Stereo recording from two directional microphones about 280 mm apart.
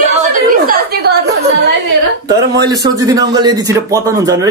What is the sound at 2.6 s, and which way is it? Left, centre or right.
Speech, centre.